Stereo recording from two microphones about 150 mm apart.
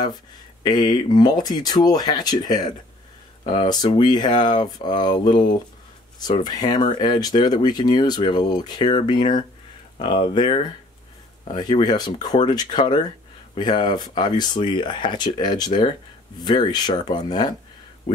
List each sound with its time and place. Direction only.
0.7 s speech: 30° left (ahead or behind)